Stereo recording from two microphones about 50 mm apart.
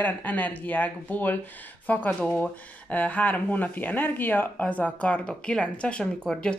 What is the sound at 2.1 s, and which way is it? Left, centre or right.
Speech, left.